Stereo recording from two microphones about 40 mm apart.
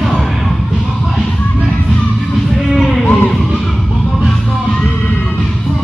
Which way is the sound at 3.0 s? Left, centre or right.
Left.